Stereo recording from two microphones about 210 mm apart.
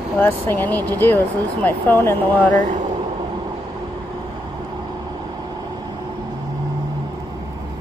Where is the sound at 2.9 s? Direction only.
20° right (ahead or behind).